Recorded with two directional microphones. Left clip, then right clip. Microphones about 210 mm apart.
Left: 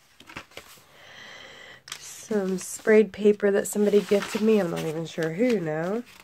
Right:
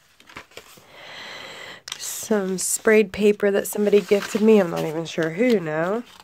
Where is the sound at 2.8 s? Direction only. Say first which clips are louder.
Right 2 dB; 35° right (ahead or behind).